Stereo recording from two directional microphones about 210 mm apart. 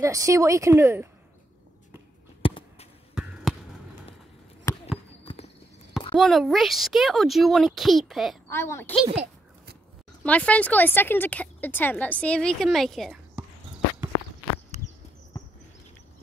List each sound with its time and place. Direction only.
0.0 s speech: 15° right (ahead or behind)
2.4 s a sound: 25° left (ahead or behind)
3.5 s a sound: centre (ahead or behind)
4.7 s basketball bounce: 10° left (ahead or behind)
5.2 s clip-clop: 25° left (ahead or behind)
6.1 s a woman's voice: centre (ahead or behind)
8.5 s speech: 10° left (ahead or behind)
9.0 s a child's voice: 30° right (ahead or behind)
10.2 s speech: 5° left (ahead or behind)